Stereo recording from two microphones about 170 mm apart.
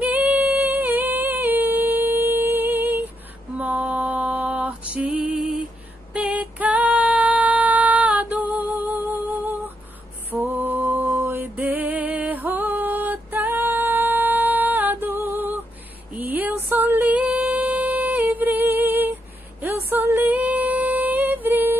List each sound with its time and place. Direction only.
0.0 s singing: 10° right (ahead or behind)
3.5 s female singing: 10° right (ahead or behind)
10.3 s music: 10° right (ahead or behind)
19.6 s female singing: 10° right (ahead or behind)